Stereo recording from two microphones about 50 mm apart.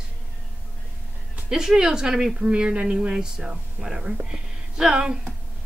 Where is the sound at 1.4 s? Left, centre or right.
Centre.